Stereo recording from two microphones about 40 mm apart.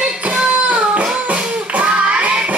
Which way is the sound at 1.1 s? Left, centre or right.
Right.